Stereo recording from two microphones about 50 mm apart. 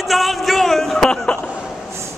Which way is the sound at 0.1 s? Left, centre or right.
Centre.